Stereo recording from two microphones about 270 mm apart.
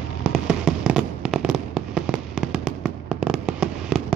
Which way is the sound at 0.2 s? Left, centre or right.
Centre.